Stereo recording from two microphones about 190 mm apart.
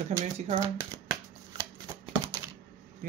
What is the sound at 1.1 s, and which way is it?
Shuffling cards, 20° right (ahead or behind).